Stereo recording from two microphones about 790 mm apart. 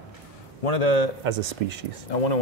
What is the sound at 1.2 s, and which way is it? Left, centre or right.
Speech, right.